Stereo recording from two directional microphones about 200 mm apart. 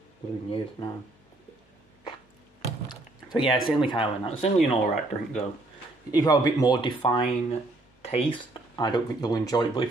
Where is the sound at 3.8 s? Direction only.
25° left (ahead or behind).